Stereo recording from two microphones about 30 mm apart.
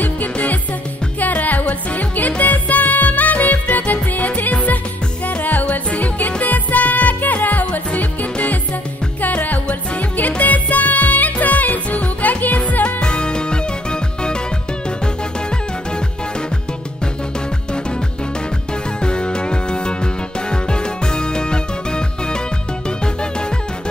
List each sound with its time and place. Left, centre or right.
0.0 s music: left
5.7 s music: left
10.4 s music: left
12.8 s music: left
19.0 s music: left